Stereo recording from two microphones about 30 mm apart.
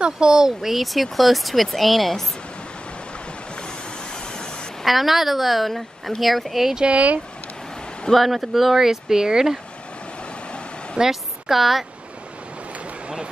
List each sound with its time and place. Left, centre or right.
0.0 s speech: right
0.6 s a woman's voice: centre
3.6 s vehicle: left
4.8 s a woman's voice: centre
6.9 s speech: right
8.1 s a woman's voice: centre
11.0 s a woman's voice: centre